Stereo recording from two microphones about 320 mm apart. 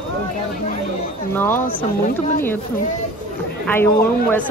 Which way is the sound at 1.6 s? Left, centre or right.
Left.